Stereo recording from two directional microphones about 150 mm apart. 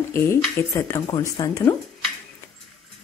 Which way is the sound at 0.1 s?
20° left (ahead or behind).